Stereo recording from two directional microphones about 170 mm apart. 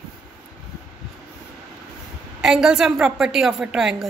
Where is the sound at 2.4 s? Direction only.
5° right (ahead or behind).